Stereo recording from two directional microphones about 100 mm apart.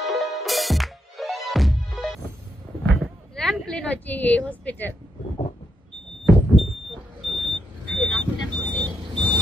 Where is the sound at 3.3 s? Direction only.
5° left (ahead or behind).